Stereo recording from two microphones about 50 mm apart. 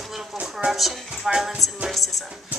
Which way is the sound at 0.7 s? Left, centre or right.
Centre.